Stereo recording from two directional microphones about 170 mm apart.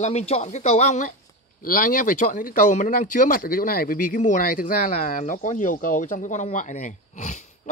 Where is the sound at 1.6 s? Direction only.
55° left (ahead or behind).